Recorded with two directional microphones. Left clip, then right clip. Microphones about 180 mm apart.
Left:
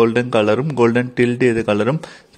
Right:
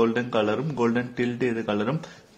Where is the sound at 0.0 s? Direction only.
45° left (ahead or behind).